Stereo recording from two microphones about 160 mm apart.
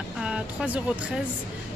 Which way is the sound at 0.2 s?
5° right (ahead or behind).